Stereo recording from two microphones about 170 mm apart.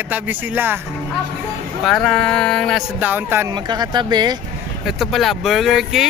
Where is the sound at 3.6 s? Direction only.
25° right (ahead or behind).